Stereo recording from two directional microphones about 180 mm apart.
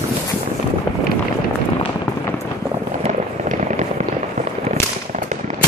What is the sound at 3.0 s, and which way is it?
Fireworks, 40° right (ahead or behind).